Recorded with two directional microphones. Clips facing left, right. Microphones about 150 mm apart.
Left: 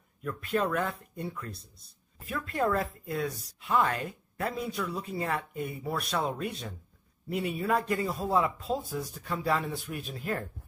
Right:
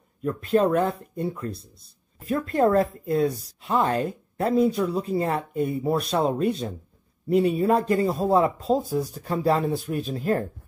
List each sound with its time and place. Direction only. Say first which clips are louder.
0.2 s speech: right 9 dB; 35° right (ahead or behind)